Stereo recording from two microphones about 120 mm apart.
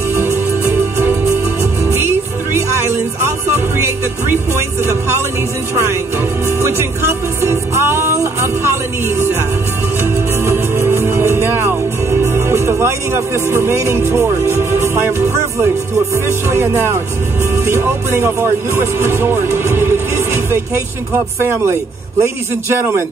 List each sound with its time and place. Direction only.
0.1 s music: 20° right (ahead or behind)
1.6 s music: 20° right (ahead or behind)
6.4 s music: 20° right (ahead or behind)
10.4 s music: 20° right (ahead or behind)
17.6 s speech: 20° right (ahead or behind)